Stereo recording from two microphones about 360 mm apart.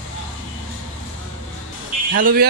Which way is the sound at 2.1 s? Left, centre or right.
Right.